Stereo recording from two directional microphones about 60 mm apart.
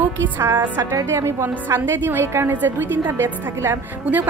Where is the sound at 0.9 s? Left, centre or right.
Right.